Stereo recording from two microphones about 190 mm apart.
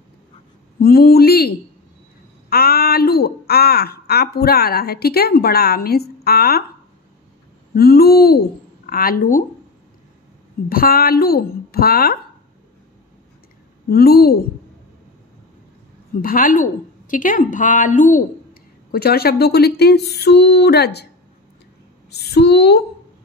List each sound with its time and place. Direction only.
0.7 s speech: 55° left (ahead or behind)
2.5 s speech: 55° left (ahead or behind)
7.7 s speech: 55° left (ahead or behind)
10.7 s speech: 50° left (ahead or behind)
13.8 s speech: 55° left (ahead or behind)
16.2 s speech: 50° left (ahead or behind)
22.1 s speech: 60° left (ahead or behind)